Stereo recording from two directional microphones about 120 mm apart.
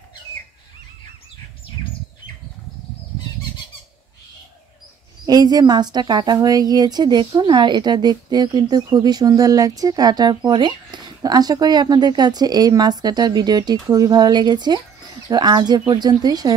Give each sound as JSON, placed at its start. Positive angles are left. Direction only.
{"t": 5.2, "sound": "a woman's voice", "side_deg": -30}